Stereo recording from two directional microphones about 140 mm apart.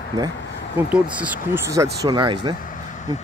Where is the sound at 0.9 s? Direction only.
15° right (ahead or behind).